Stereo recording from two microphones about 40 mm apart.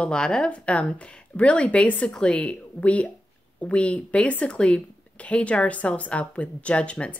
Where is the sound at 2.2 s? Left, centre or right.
Left.